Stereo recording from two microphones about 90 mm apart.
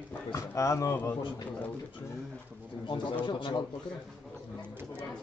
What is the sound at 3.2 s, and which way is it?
Speech, 65° left (ahead or behind).